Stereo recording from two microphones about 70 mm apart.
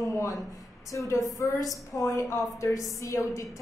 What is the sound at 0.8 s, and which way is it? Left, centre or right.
A woman's voice, left.